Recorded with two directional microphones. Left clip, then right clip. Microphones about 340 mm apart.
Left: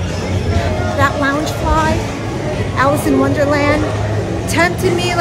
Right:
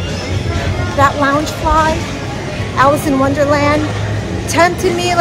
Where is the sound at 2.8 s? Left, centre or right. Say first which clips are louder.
Right 2 dB; centre.